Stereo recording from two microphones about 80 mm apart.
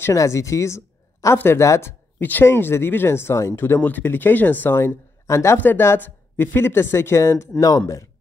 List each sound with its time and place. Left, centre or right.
0.1 s speech: left